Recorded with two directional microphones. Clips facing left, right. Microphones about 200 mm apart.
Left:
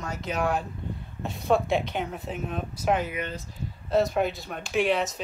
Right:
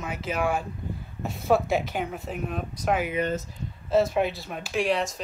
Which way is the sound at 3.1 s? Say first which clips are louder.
Right 7 dB; 45° right (ahead or behind).